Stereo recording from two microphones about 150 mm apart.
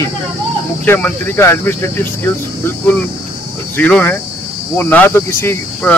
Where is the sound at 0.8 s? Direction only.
10° left (ahead or behind).